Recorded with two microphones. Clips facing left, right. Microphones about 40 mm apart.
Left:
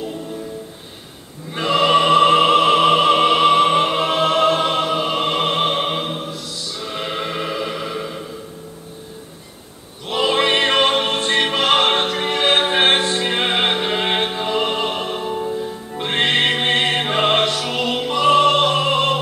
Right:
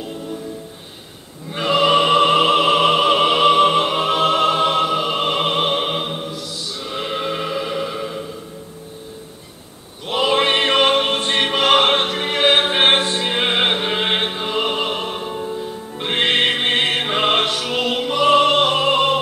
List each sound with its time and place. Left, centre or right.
1.5 s opera: centre
3.7 s music: centre
4.5 s music: centre
5.1 s opera: centre
6.8 s music: centre
10.0 s music: centre
11.6 s music: right; by 15.5 s centre
16.0 s music: centre
17.5 s music: right
17.9 s opera: centre